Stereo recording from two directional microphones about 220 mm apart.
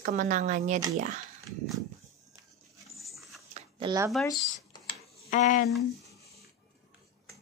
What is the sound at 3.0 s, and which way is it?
Dog, centre (ahead or behind).